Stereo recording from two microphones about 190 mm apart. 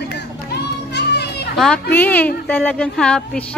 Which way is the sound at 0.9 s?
60° left (ahead or behind).